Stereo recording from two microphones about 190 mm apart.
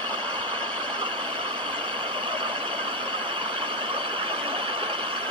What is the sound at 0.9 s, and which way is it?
Vehicle, 25° right (ahead or behind).